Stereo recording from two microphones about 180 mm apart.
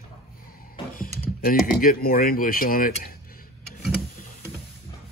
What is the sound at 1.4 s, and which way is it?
Speech, 55° left (ahead or behind).